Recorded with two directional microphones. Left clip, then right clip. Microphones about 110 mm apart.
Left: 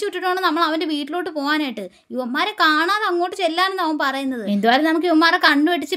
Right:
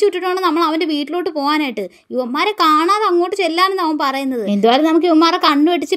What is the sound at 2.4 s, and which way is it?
A woman's voice, 25° right (ahead or behind).